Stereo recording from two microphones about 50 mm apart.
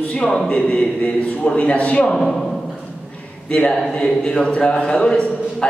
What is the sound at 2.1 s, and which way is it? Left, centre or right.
Speech, centre.